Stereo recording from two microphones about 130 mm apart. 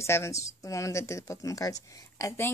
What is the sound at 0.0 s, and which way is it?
Speech, 20° left (ahead or behind).